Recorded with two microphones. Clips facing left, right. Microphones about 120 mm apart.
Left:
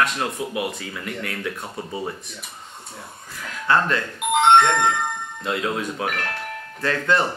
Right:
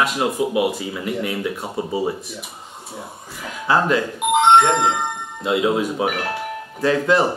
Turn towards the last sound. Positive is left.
turn(degrees=-5)  # may be behind; listen again after turning